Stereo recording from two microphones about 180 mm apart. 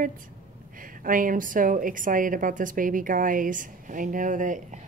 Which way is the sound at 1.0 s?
50° right (ahead or behind).